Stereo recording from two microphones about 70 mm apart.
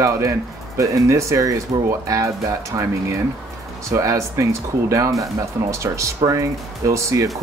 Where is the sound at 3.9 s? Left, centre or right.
Right.